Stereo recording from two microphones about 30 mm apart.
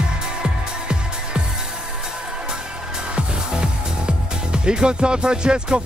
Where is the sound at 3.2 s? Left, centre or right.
Right.